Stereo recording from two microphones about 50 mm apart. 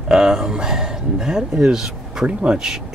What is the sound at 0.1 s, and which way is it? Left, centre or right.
Speech, centre.